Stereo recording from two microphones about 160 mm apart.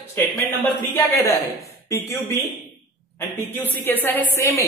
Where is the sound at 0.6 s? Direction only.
15° left (ahead or behind).